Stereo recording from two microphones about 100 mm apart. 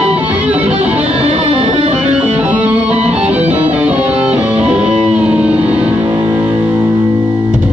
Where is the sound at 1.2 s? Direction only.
80° right; by 2.0 s 65° right (ahead or behind).